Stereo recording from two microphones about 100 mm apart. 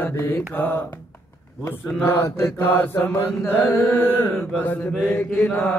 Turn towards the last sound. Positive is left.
turn(degrees=15)  # may be behind; listen again after turning